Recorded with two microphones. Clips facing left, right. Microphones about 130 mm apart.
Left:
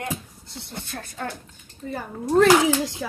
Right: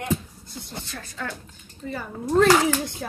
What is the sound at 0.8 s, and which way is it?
A child's voice, 55° left (ahead or behind).